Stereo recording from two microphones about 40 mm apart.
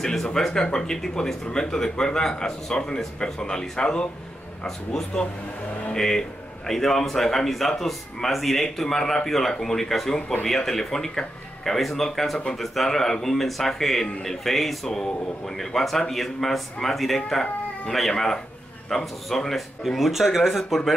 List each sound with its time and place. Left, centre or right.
0.0 s speech: centre
19.9 s speech: centre